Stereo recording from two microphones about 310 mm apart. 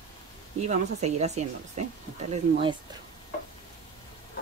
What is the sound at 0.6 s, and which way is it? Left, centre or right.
Speech, right.